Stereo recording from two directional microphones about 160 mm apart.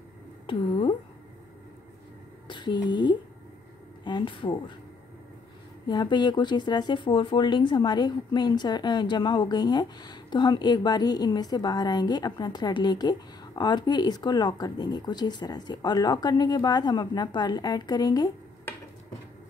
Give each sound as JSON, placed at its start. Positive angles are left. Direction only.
{"t": 0.5, "sound": "speech", "side_deg": 30}
{"t": 2.4, "sound": "speech", "side_deg": 30}
{"t": 5.9, "sound": "speech", "side_deg": 25}